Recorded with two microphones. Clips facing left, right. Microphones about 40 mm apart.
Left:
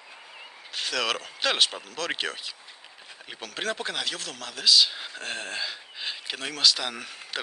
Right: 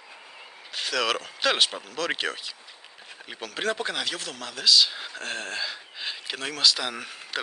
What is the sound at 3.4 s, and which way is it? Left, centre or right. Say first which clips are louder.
Speech: right 3 dB; centre.